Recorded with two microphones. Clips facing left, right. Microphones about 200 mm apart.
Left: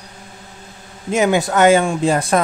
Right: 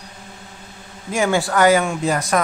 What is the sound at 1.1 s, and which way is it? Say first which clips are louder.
Speech: left 3 dB; 20° left (ahead or behind).